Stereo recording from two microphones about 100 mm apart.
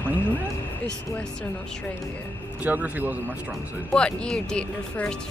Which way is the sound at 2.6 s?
15° right (ahead or behind).